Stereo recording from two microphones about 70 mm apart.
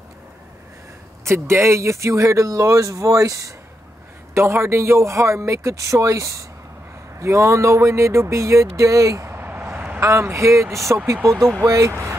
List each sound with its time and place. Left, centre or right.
1.2 s speech: right
9.3 s a sound: right
10.0 s speech: right